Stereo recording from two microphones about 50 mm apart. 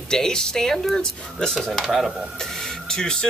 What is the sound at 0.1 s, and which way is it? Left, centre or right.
Speech, centre.